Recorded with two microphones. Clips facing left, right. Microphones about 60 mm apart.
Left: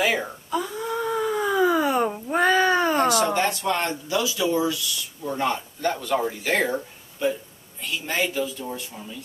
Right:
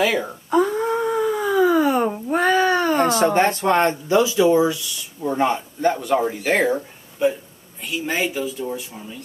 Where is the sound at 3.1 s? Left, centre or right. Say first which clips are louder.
Right 4 dB; right.